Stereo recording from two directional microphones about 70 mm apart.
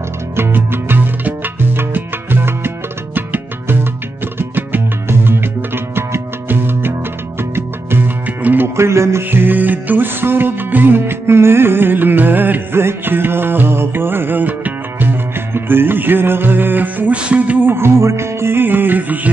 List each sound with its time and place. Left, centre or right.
0.4 s music: right
8.6 s music: right